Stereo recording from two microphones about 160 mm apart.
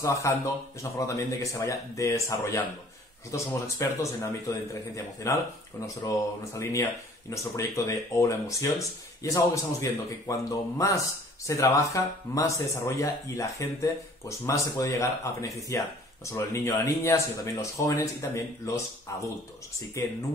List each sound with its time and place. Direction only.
0.0 s speech: 20° left (ahead or behind)
20.0 s speech: 20° left (ahead or behind)